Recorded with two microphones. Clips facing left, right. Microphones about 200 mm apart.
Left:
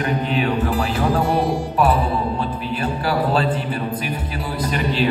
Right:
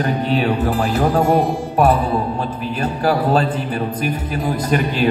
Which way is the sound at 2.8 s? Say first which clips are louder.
Right 4 dB; 45° right (ahead or behind).